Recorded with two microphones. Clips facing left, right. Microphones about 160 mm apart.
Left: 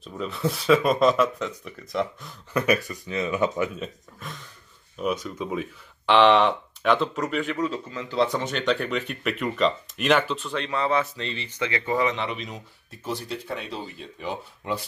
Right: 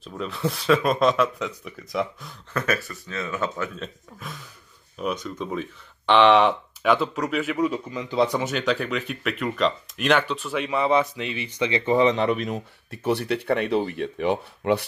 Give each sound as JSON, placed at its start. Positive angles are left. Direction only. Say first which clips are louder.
{"t": 0.0, "sound": "speech", "louder": "even", "side_deg": 0}
{"t": 2.5, "sound": "speech", "louder": "left 3 dB", "side_deg": 15}
{"t": 4.9, "sound": "speech", "louder": "left 1 dB", "side_deg": 5}
{"t": 12.2, "sound": "speech", "louder": "right 8 dB", "side_deg": -50}